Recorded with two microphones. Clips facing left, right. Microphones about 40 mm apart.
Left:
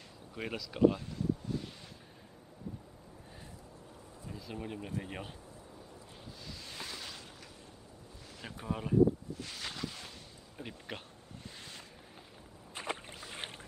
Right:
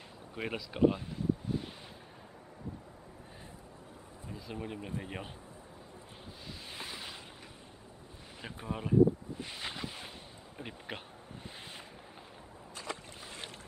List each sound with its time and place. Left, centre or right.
0.4 s speech: centre
4.3 s speech: centre
6.7 s waves: centre
8.4 s speech: centre
9.3 s a sound: right
10.6 s speech: centre
12.8 s rowboat: left